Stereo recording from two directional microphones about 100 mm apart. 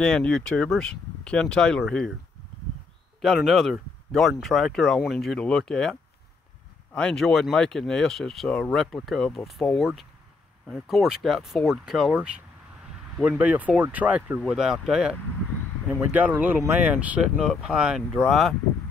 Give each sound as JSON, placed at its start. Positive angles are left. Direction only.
{"t": 0.0, "sound": "speech", "side_deg": 10}
{"t": 3.2, "sound": "speech", "side_deg": 0}
{"t": 14.4, "sound": "speech", "side_deg": -5}
{"t": 15.9, "sound": "speech", "side_deg": -15}